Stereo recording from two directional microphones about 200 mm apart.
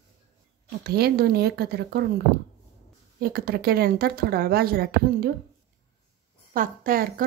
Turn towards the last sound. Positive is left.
turn(degrees=-45)  # may be behind; listen again after turning